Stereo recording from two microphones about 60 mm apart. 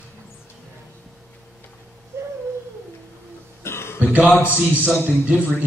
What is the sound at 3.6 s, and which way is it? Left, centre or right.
Cough, left.